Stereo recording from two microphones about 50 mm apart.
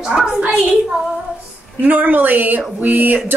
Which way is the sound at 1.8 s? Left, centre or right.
Right.